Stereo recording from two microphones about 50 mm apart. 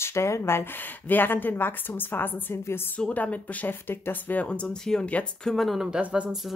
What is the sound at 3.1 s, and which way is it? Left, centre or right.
Speech, left.